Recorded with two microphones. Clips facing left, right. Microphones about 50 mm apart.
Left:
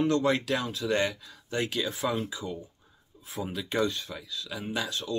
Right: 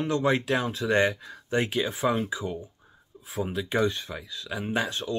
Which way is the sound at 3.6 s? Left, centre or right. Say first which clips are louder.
Right 2 dB; centre.